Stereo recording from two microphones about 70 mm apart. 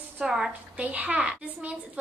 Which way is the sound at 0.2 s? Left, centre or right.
Centre.